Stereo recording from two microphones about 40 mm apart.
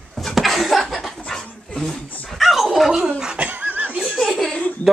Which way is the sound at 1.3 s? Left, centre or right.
Centre.